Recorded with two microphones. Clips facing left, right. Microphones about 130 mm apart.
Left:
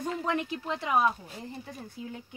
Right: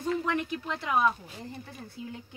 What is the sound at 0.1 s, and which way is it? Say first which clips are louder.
Speech: right 3 dB; 25° left (ahead or behind).